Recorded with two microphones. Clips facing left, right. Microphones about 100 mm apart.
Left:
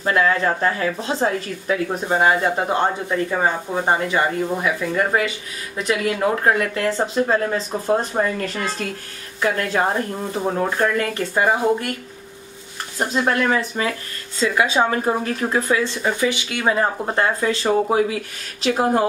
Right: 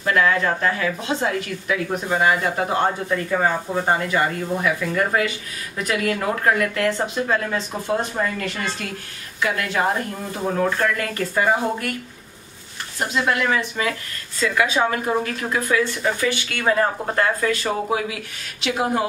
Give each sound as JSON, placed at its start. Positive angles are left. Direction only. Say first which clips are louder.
{"t": 0.0, "sound": "speech", "louder": "left 1 dB", "side_deg": 30}
{"t": 10.6, "sound": "speech", "louder": "even", "side_deg": 20}
{"t": 13.1, "sound": "speech", "louder": "left 2 dB", "side_deg": 35}